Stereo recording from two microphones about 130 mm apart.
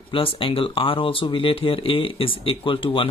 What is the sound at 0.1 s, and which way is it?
Speech, 45° left (ahead or behind).